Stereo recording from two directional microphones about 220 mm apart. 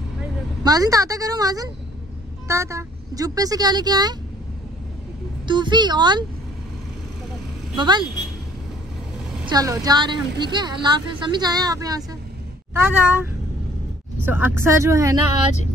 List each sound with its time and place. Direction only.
0.7 s speech: 15° right (ahead or behind)
5.5 s a woman's voice: 20° right (ahead or behind)
7.7 s a woman's voice: 20° right (ahead or behind)
9.5 s a woman's voice: 15° right (ahead or behind)